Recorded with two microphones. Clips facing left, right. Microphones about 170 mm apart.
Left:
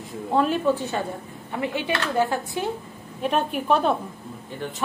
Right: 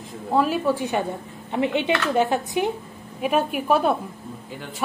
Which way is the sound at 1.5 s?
20° right (ahead or behind).